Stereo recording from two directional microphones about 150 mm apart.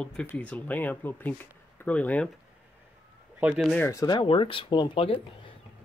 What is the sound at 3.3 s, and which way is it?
Speech, 10° right (ahead or behind).